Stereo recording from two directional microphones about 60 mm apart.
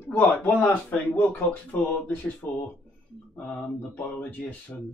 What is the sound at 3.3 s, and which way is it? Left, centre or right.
Speech, centre.